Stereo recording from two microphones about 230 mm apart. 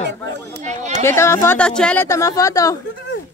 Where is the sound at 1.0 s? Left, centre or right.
Centre.